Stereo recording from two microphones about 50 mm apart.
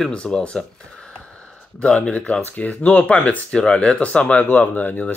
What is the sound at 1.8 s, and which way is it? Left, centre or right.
Speech, left.